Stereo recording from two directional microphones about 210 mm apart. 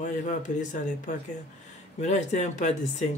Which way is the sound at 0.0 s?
35° left (ahead or behind).